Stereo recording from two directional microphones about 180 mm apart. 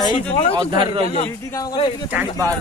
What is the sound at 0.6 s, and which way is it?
Speech, 25° right (ahead or behind).